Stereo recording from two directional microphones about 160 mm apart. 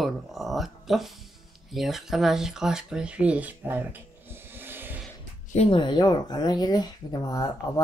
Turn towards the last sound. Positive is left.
turn(degrees=20)  # may be behind; listen again after turning